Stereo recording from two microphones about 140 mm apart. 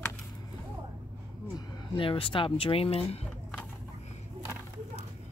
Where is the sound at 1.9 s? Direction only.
40° left (ahead or behind).